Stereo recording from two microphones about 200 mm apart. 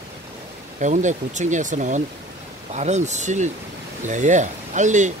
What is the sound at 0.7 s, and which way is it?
Speech, 40° right (ahead or behind).